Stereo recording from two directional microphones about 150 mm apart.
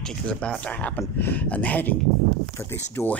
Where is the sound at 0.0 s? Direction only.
5° left (ahead or behind).